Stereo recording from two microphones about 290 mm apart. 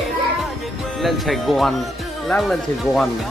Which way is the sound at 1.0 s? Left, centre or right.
Centre.